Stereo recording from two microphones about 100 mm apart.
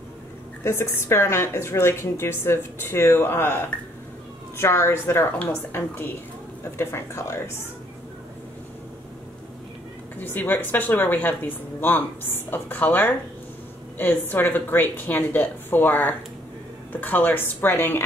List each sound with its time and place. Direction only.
0.7 s a woman's voice: 25° left (ahead or behind)
4.6 s a woman's voice: 30° left (ahead or behind)
10.2 s a woman's voice: 20° left (ahead or behind)